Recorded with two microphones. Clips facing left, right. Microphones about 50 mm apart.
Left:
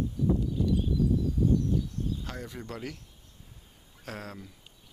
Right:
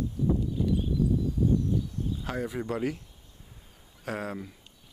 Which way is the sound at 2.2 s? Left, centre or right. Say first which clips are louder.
Right 8 dB; centre.